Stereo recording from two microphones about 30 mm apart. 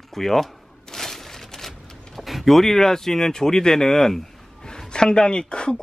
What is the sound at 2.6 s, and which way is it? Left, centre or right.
A man's voice, centre.